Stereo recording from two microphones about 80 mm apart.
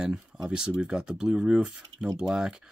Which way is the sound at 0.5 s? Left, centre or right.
Centre.